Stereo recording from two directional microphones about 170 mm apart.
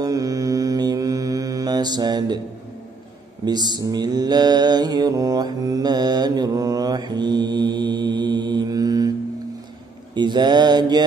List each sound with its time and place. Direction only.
0.0 s mantra: 20° right (ahead or behind)
3.4 s mantra: 25° right (ahead or behind)
10.1 s mantra: 25° right (ahead or behind)